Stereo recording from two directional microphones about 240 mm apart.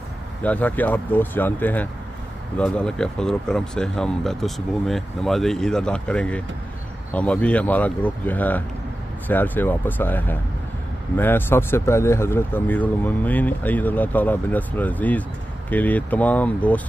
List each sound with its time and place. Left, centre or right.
0.4 s speech: centre